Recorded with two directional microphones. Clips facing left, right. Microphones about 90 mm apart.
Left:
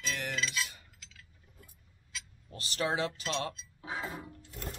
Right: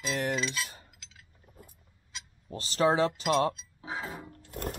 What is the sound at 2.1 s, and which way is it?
Speech, 30° right (ahead or behind).